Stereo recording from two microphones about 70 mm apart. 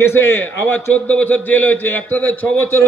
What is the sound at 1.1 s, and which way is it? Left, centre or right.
A man's voice, left.